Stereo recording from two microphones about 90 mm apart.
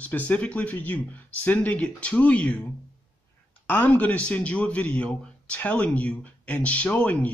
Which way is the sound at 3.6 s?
20° left (ahead or behind).